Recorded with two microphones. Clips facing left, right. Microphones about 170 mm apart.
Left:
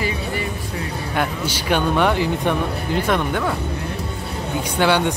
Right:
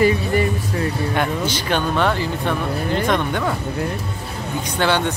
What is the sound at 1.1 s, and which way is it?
Speech, 5° left (ahead or behind).